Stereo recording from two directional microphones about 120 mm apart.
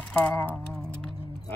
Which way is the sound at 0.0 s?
10° left (ahead or behind).